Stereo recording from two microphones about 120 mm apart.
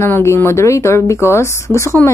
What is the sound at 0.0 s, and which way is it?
Speech, 20° left (ahead or behind).